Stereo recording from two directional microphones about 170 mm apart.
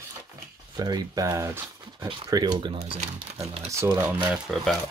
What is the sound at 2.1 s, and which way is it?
Speech, 25° right (ahead or behind).